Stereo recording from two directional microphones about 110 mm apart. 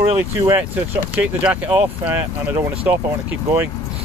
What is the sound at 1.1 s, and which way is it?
Speech, 10° right (ahead or behind).